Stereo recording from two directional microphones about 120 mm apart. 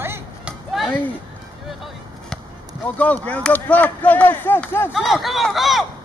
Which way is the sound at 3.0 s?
10° left (ahead or behind).